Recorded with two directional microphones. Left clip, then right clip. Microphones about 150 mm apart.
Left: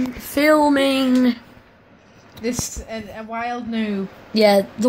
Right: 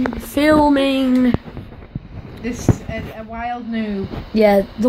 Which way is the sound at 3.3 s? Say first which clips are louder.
Even; 60° left (ahead or behind).